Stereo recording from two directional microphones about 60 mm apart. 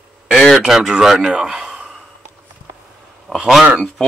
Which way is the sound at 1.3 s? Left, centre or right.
Centre.